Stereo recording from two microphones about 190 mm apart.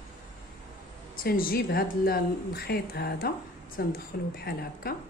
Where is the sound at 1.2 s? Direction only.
50° left (ahead or behind).